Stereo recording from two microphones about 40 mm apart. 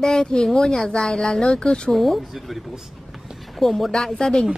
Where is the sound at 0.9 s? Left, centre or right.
Left.